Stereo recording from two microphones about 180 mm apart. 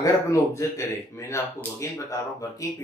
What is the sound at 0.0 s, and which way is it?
Speech, 15° left (ahead or behind).